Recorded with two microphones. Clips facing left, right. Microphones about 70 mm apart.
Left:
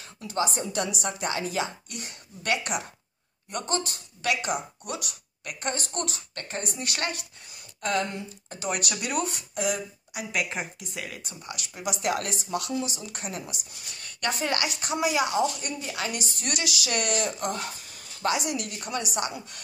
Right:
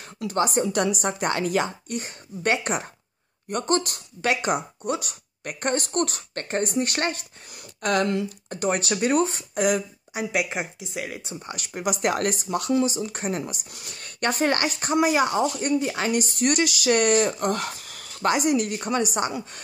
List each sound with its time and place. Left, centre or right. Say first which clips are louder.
0.3 s a woman's voice: right 5 dB; right
3.4 s a woman's voice: right 6 dB; right
4.2 s speech: right 4 dB; right
7.5 s speech: right 4 dB; right
8.5 s speech: right 5 dB; right
8.7 s speech: right 8 dB; right
10.3 s a woman's voice: right 3 dB; centre
11.5 s a woman's voice: right 5 dB; right
17.6 s a sound: right 4 dB; right
18.2 s a woman's voice: right 6 dB; right